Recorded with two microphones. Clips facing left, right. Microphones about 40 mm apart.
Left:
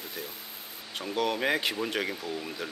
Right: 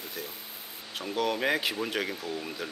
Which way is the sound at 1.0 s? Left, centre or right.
Centre.